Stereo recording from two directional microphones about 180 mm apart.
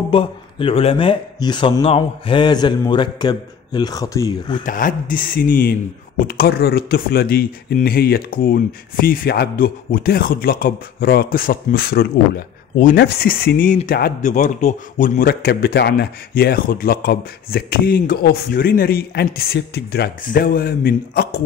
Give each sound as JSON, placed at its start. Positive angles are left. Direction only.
{"t": 0.1, "sound": "a man's voice", "side_deg": 30}
{"t": 4.6, "sound": "speech", "side_deg": 50}